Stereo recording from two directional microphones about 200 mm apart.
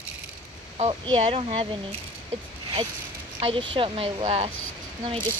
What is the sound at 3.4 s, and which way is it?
Speech, 30° right (ahead or behind).